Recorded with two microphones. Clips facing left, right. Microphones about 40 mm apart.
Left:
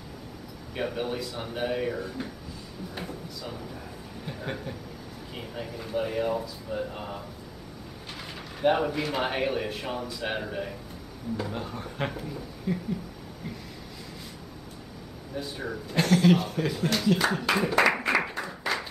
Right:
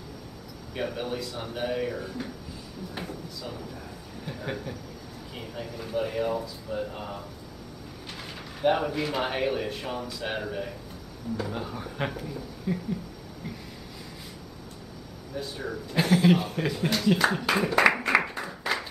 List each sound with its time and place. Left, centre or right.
0.7 s speech: centre
8.5 s speech: centre
15.3 s speech: centre
16.0 s speech: centre
18.2 s clapping: centre